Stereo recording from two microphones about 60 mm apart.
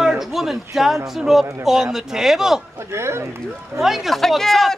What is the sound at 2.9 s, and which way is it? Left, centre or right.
Speech, right.